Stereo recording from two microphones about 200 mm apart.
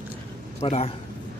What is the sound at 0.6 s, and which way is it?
Speech, 30° left (ahead or behind).